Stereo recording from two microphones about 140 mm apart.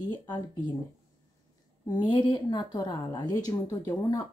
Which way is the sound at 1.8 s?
30° left (ahead or behind).